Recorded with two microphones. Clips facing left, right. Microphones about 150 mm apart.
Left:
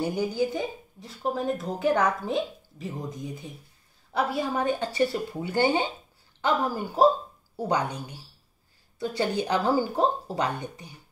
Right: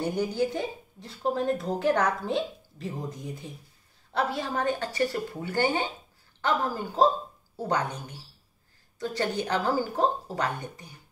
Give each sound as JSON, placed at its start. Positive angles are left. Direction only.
{"t": 0.0, "sound": "a woman's voice", "side_deg": 5}
{"t": 9.0, "sound": "speech", "side_deg": 10}